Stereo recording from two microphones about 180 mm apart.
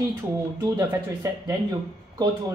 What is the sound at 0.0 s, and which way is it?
Speech, 15° right (ahead or behind).